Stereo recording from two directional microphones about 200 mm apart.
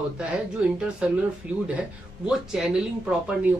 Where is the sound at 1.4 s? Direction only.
5° right (ahead or behind).